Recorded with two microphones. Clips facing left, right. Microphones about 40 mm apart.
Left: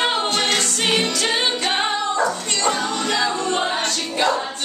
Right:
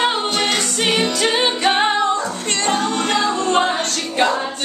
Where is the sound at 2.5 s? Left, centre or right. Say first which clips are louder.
Right 2 dB; right.